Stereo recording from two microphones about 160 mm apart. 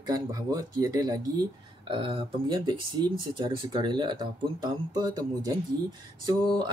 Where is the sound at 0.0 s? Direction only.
25° right (ahead or behind).